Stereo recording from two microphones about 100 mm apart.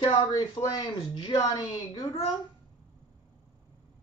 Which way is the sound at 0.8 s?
55° left (ahead or behind).